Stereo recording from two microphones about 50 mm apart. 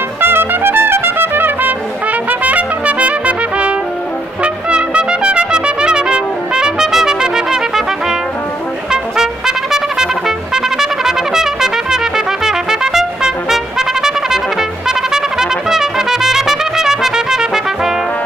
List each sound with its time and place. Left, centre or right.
0.2 s trumpet: right
2.2 s trumpet: right; by 17.9 s centre